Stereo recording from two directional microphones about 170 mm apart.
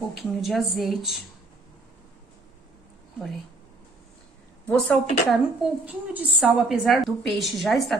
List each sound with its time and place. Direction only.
0.1 s speech: centre (ahead or behind)
4.6 s speech: centre (ahead or behind)